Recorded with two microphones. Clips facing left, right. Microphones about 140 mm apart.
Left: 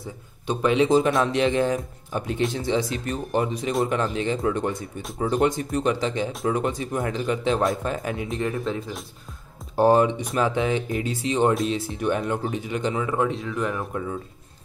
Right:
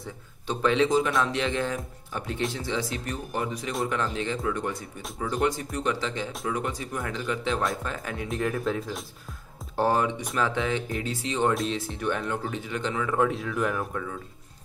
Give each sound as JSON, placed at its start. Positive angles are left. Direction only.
{"t": 0.5, "sound": "speech", "side_deg": 15}
{"t": 0.8, "sound": "speech", "side_deg": 30}
{"t": 8.2, "sound": "speech", "side_deg": 0}
{"t": 9.8, "sound": "speech", "side_deg": 20}
{"t": 11.5, "sound": "speech", "side_deg": 0}
{"t": 12.0, "sound": "speech", "side_deg": 15}
{"t": 13.2, "sound": "speech", "side_deg": 0}